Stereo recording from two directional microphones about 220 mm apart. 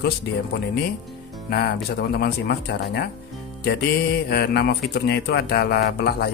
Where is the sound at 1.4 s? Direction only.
45° left (ahead or behind).